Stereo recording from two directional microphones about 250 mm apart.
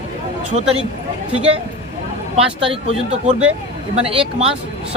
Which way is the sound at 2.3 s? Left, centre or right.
Right.